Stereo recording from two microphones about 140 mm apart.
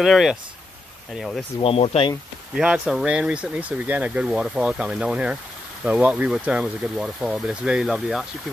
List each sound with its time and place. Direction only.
0.0 s speech: centre (ahead or behind)
1.6 s speech: 40° left (ahead or behind)
2.5 s speech: 5° right (ahead or behind)